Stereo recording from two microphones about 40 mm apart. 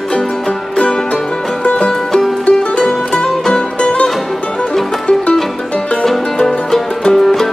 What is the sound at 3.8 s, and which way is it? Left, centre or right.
Music, left.